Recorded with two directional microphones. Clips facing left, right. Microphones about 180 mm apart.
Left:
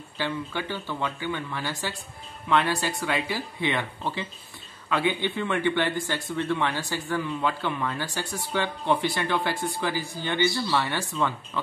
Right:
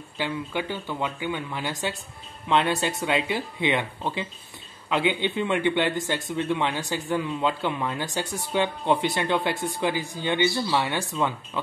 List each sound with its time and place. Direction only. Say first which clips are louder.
0.2 s speech: right 1 dB; 15° right (ahead or behind)